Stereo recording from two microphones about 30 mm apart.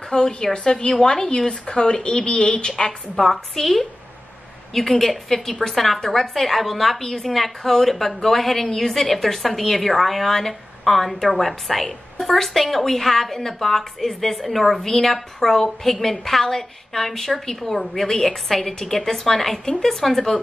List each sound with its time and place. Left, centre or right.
0.1 s a woman's voice: left
3.2 s a woman's voice: centre